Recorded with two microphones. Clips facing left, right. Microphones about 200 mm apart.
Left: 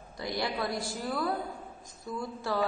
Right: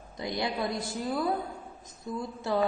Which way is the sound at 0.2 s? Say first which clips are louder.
Right 1 dB; 20° right (ahead or behind).